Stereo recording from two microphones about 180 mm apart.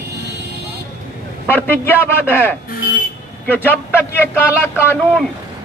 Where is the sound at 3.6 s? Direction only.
10° left (ahead or behind).